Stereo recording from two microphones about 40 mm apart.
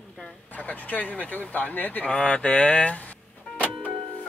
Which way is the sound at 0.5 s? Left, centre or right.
Left.